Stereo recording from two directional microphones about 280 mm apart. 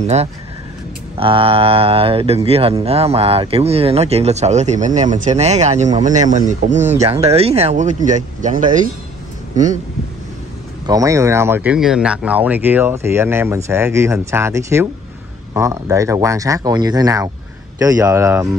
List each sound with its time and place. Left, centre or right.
0.0 s speech: right
10.9 s speech: centre